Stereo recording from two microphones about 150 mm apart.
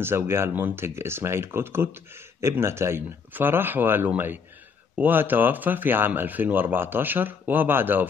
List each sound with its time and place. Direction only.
0.0 s speech: 15° right (ahead or behind)